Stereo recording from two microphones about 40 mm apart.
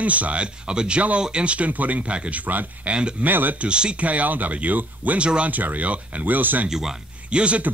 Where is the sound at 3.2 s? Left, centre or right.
Right.